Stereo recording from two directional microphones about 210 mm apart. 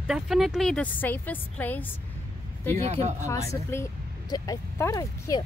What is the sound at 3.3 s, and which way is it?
Speech, 15° left (ahead or behind).